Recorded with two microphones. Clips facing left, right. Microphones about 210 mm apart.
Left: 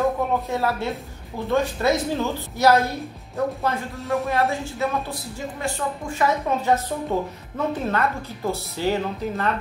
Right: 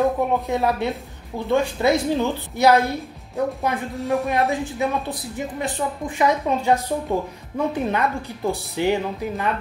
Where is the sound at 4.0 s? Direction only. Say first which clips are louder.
Right 4 dB; centre (ahead or behind).